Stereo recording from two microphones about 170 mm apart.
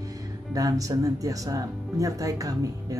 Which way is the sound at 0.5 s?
20° right (ahead or behind).